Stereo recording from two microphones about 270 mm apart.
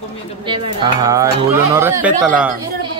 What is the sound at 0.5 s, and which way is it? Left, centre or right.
A man's voice, centre.